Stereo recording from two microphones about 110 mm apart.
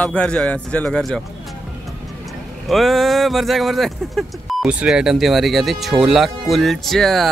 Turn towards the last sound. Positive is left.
turn(degrees=0)  # may be behind; listen again after turning